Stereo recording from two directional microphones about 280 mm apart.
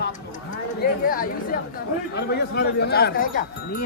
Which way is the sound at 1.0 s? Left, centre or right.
Left.